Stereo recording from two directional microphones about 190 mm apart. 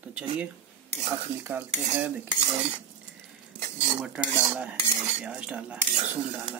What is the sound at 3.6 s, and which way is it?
Cutlery, 40° right (ahead or behind).